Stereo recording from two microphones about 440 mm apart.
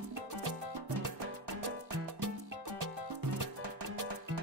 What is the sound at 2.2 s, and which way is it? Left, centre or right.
Music, right.